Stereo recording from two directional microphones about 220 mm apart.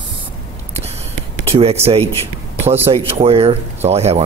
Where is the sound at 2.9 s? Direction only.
25° right (ahead or behind).